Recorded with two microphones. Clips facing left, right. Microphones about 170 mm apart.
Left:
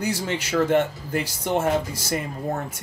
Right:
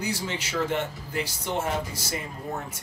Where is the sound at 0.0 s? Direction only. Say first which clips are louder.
Left 5 dB; 45° left (ahead or behind).